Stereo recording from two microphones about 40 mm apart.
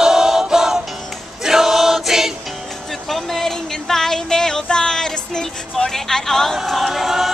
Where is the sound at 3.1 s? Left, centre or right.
Centre.